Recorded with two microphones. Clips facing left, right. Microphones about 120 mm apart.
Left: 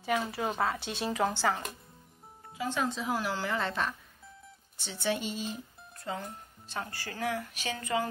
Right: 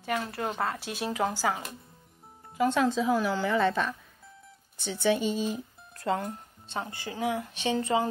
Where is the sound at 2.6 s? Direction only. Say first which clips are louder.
Right 7 dB; 80° right.